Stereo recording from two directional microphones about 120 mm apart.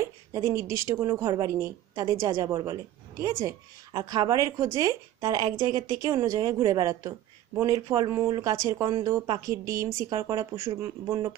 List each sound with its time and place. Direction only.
0.0 s a woman's voice: 25° right (ahead or behind)